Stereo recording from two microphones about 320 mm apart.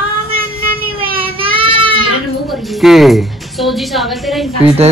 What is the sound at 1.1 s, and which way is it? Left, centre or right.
Child singing, centre.